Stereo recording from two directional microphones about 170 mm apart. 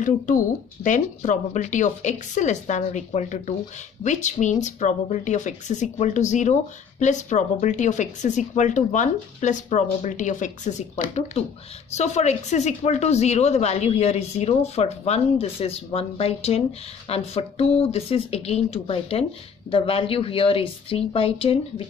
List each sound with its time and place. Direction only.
0.8 s speech: 45° left (ahead or behind)